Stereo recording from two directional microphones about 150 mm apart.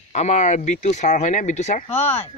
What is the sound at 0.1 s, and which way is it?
Speech, 50° left (ahead or behind).